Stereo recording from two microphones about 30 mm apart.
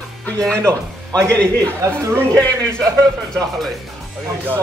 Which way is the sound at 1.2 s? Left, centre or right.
Left.